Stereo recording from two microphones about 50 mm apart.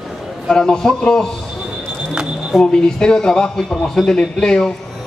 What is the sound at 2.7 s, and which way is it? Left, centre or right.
A man's voice, centre.